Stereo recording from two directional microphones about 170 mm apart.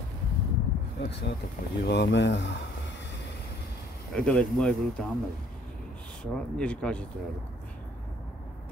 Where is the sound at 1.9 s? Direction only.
85° left.